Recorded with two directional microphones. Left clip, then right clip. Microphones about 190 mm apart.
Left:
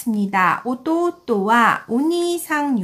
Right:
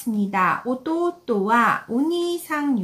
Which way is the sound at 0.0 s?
30° left (ahead or behind).